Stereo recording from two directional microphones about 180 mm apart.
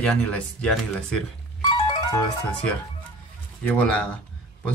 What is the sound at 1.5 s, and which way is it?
Music, 25° left (ahead or behind).